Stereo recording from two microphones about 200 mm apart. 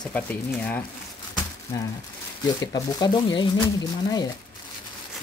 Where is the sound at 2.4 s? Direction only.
20° left (ahead or behind).